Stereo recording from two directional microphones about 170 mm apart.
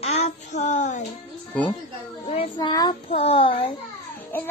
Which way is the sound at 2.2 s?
30° left (ahead or behind).